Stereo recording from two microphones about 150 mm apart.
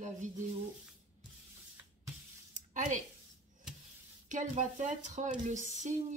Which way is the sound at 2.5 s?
55° right (ahead or behind).